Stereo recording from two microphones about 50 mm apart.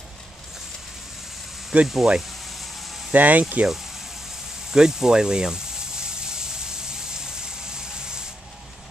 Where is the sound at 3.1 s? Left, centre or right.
Right.